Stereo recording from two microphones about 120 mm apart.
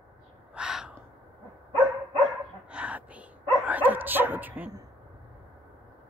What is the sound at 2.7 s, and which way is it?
Whispering, 10° right (ahead or behind).